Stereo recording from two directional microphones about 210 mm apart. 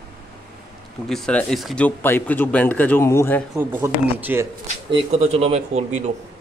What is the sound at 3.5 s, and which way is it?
Speech, 10° right (ahead or behind).